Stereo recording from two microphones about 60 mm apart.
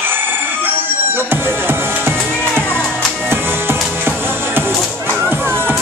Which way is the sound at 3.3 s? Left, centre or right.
Right.